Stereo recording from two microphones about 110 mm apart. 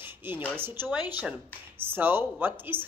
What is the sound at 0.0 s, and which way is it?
A woman's voice, 20° right (ahead or behind).